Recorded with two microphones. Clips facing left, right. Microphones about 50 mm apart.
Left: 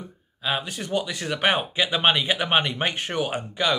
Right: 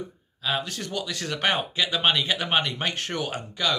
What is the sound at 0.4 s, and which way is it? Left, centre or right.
Speech, centre.